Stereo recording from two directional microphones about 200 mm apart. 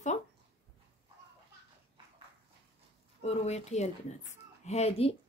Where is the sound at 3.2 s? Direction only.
35° left (ahead or behind).